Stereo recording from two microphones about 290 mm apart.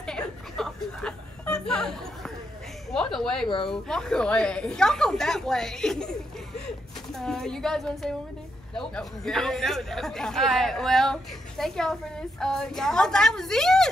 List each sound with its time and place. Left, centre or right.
0.0 s chuckle: centre
2.9 s a sound: centre
3.4 s speech: centre
3.7 s speech: centre
7.2 s speech: centre